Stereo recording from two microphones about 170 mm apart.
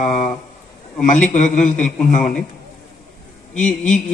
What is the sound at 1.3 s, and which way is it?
Speech, 45° left (ahead or behind).